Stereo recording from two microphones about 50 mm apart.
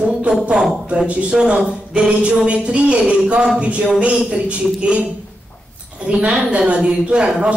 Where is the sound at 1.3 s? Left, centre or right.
Centre.